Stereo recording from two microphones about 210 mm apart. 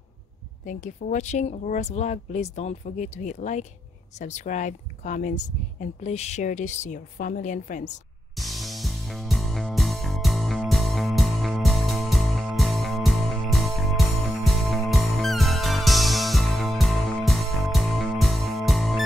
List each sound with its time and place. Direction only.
0.7 s speech: 35° left (ahead or behind)
8.4 s music: centre (ahead or behind)